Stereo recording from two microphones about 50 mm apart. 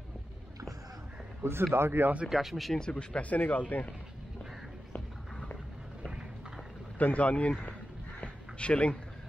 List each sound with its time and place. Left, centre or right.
1.4 s speech: right
2.2 s speech: centre
2.7 s speech: centre
7.0 s speech: left
8.2 s a sound: left